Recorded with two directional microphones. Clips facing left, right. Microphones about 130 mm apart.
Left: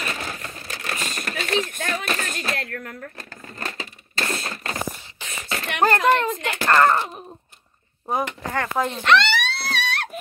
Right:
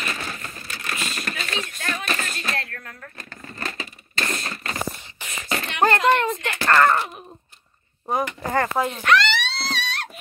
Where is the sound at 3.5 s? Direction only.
20° left (ahead or behind).